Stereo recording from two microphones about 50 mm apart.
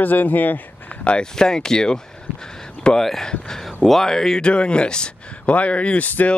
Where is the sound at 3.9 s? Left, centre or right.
Centre; by 6.1 s left.